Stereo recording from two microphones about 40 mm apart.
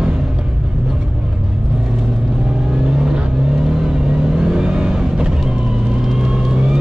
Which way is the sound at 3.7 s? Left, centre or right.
Centre.